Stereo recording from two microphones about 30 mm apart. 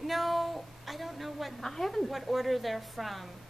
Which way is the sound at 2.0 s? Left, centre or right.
Centre.